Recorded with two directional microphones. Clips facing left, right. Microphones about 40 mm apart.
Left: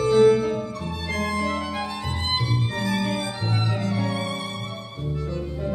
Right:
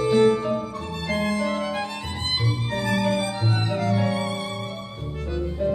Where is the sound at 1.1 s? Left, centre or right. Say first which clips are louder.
Right 1 dB; centre.